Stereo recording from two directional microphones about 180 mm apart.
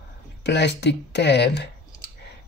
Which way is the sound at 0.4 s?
70° left (ahead or behind).